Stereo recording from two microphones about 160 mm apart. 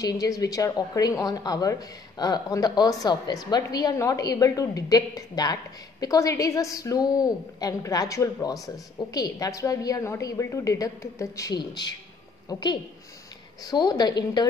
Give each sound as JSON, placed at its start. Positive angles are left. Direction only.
{"t": 0.0, "sound": "a woman's voice", "side_deg": 20}